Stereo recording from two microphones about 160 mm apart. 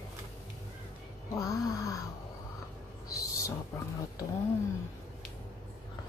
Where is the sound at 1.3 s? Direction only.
20° left (ahead or behind).